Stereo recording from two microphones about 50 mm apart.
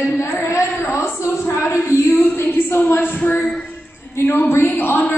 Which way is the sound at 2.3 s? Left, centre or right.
Left.